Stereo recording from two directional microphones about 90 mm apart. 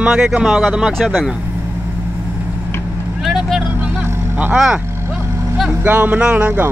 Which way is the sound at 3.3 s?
Centre (ahead or behind).